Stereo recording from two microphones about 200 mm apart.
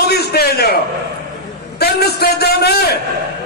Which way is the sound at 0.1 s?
50° left (ahead or behind).